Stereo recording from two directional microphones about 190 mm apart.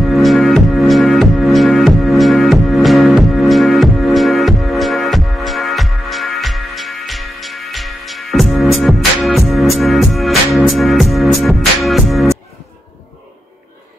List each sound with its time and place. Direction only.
0.0 s music: centre (ahead or behind)